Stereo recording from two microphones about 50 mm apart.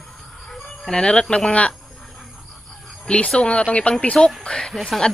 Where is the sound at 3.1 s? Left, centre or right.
Left; by 5.0 s centre.